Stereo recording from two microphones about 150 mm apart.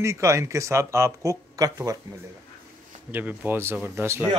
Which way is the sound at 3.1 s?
10° right (ahead or behind).